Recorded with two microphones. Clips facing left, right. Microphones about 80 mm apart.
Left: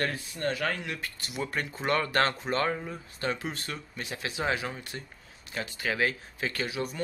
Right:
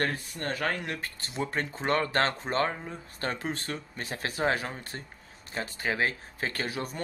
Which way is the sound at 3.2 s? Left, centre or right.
Right.